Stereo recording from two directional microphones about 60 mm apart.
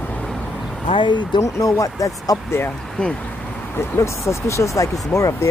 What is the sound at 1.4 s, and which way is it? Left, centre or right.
Speech, left.